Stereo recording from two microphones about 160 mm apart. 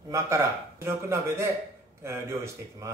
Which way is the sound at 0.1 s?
20° right (ahead or behind).